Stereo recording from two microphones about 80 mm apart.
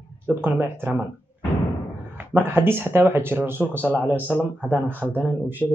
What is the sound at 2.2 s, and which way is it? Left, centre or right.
Speech, right.